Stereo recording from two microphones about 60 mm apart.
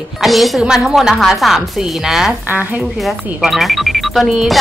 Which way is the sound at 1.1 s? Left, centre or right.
Centre.